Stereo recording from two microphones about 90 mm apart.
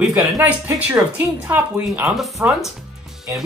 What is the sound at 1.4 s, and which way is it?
Speech, 20° right (ahead or behind).